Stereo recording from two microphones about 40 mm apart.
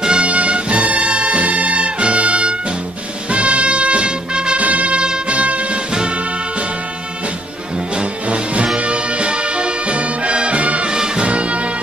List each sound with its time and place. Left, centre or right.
0.0 s music: right
0.3 s music: right
4.6 s music: right
8.0 s music: right